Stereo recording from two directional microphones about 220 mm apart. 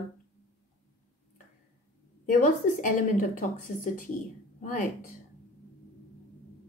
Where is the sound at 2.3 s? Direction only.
35° left (ahead or behind).